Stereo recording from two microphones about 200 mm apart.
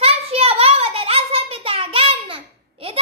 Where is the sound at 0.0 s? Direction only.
30° right (ahead or behind).